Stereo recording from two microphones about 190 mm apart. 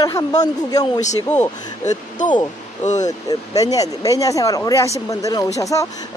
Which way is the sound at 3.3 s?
20° left (ahead or behind).